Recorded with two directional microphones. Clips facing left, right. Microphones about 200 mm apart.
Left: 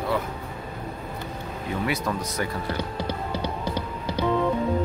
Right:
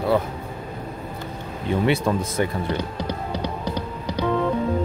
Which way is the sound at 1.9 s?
25° right (ahead or behind).